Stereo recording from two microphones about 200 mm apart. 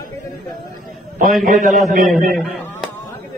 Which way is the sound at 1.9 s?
40° right (ahead or behind).